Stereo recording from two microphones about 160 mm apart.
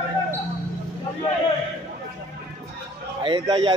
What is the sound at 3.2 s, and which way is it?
Speech, 30° right (ahead or behind).